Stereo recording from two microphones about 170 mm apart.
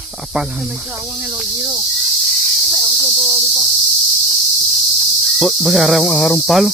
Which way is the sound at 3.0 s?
30° right (ahead or behind).